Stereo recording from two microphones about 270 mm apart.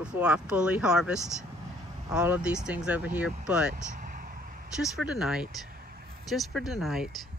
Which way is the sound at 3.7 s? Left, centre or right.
Right.